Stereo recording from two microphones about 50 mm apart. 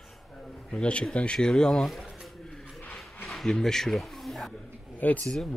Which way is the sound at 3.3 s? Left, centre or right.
Centre.